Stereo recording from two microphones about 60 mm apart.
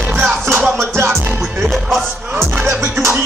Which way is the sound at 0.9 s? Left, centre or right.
Right.